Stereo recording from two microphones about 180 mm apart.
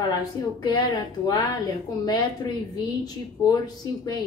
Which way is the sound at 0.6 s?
25° left (ahead or behind).